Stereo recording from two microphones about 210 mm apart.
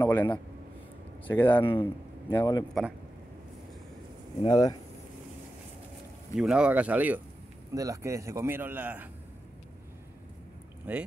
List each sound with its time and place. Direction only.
0.0 s a man's voice: 10° left (ahead or behind)
4.4 s speech: 20° left (ahead or behind)
6.3 s a man's voice: 5° right (ahead or behind)
10.9 s a man's voice: 5° right (ahead or behind)